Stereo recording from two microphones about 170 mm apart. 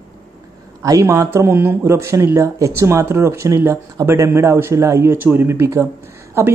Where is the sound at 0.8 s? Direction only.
20° right (ahead or behind).